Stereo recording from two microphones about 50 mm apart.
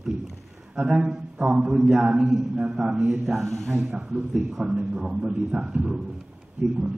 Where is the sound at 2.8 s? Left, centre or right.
Centre.